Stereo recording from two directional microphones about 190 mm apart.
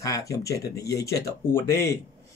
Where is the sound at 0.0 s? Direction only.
15° left (ahead or behind).